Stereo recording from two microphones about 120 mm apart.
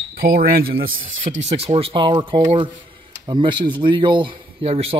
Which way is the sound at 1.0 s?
90° right.